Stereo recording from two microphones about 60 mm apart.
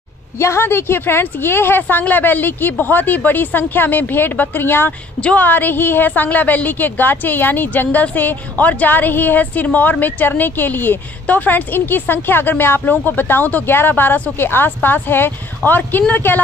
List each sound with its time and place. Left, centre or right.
0.4 s a woman's voice: left
5.2 s a woman's voice: left